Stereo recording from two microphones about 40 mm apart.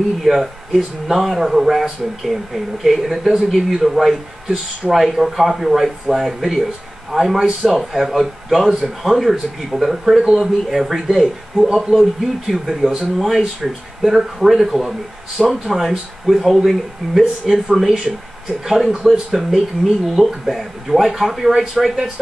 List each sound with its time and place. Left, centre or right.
0.2 s speech: centre
11.6 s speech: centre
11.9 s speech: centre
16.3 s speech: centre